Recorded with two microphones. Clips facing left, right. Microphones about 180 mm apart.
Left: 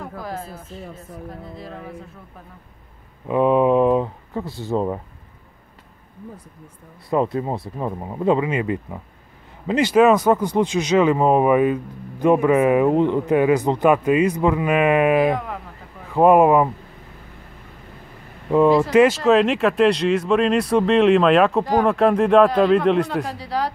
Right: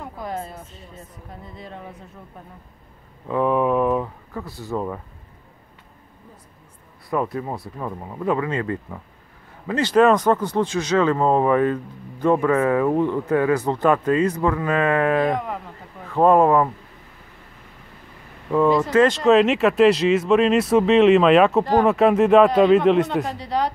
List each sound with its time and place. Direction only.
0.0 s a sound: centre (ahead or behind)
3.3 s speech: 20° left (ahead or behind)
7.1 s speech: 25° left (ahead or behind); by 15.6 s centre (ahead or behind)
16.1 s speech: 10° left (ahead or behind)
18.7 s speech: 10° left (ahead or behind)